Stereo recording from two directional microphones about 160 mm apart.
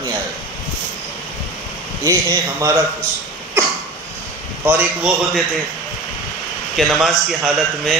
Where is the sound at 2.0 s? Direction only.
20° right (ahead or behind).